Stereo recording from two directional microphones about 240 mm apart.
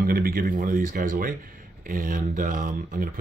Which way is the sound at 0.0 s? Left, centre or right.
Right.